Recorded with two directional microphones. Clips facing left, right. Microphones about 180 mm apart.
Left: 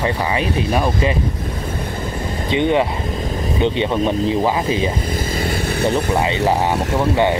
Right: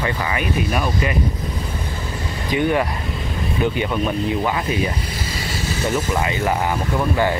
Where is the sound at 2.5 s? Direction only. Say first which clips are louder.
Left 2 dB; 25° left (ahead or behind).